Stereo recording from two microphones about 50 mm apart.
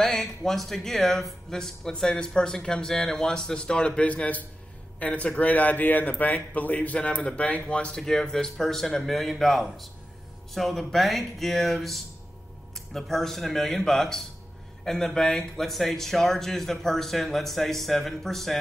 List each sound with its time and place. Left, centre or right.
0.0 s speech: centre